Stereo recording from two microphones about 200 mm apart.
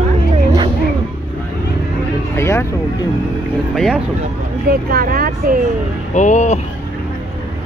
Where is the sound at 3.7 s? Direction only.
Centre (ahead or behind).